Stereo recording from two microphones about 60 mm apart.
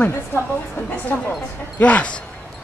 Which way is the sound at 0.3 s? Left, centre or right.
Left.